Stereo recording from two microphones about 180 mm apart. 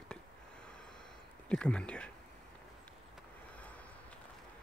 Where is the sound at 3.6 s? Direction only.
5° left (ahead or behind).